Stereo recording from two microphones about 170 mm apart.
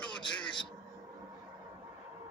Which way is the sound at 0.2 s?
30° left (ahead or behind).